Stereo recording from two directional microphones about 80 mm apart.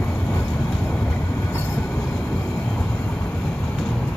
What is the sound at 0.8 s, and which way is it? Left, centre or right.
Vehicle, centre.